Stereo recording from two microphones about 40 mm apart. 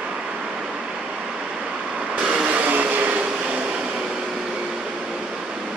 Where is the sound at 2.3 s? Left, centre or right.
Right.